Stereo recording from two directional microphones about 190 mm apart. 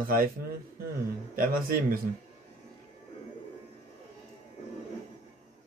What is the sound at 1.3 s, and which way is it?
Speech, 50° right (ahead or behind).